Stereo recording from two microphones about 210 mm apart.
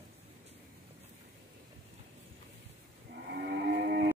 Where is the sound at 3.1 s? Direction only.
50° right (ahead or behind).